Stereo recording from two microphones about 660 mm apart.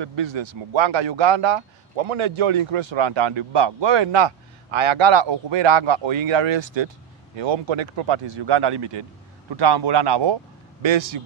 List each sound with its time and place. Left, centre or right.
0.0 s a man's voice: right